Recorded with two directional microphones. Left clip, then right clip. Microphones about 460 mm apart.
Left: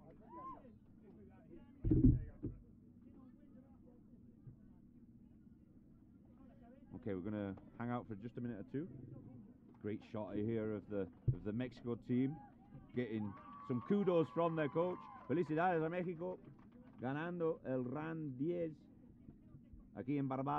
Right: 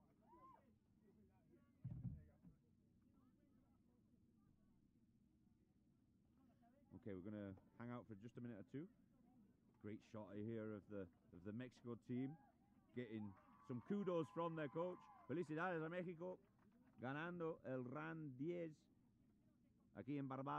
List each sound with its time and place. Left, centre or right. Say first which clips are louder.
7.0 s speech: left 11 dB; centre
19.9 s speech: left 10 dB; right